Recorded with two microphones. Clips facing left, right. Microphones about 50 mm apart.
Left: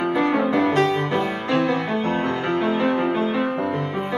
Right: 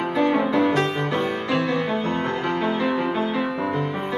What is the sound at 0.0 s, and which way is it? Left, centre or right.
Music, left.